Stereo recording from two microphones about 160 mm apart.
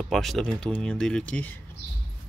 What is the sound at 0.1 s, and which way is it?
Speech, centre (ahead or behind).